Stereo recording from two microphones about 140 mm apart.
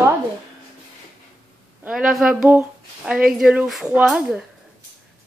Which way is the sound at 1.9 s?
5° right (ahead or behind).